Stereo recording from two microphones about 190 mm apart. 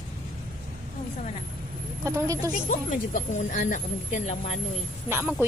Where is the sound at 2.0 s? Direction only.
15° right (ahead or behind).